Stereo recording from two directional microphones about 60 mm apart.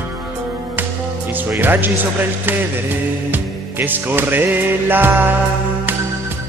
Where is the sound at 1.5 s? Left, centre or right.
Right.